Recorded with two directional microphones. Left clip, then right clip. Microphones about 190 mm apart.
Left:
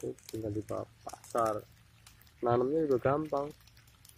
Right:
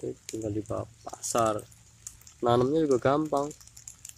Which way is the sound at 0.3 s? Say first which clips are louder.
Right 5 dB; 15° right (ahead or behind).